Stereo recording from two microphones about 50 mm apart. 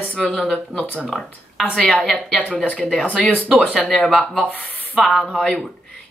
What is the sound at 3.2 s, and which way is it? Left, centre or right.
Speech, left.